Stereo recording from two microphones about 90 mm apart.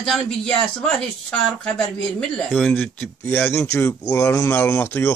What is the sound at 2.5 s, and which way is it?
Speech, 25° left (ahead or behind).